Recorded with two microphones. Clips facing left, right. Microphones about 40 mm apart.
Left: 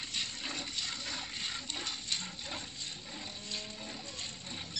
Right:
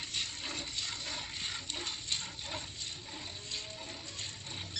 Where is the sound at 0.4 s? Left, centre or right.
Left.